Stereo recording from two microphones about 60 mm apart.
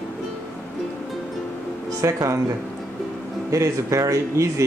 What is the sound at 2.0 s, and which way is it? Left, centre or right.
Speech, right.